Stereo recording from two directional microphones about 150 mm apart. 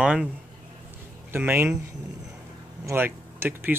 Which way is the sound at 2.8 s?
15° right (ahead or behind).